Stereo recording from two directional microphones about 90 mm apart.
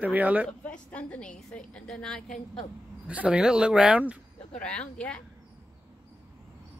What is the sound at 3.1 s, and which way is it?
Speech, 15° right (ahead or behind).